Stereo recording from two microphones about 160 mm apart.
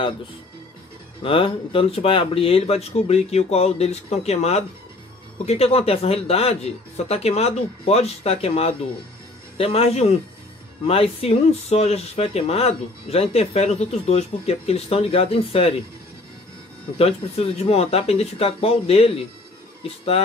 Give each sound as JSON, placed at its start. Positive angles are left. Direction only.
{"t": 1.2, "sound": "speech", "side_deg": 35}
{"t": 17.0, "sound": "speech", "side_deg": 40}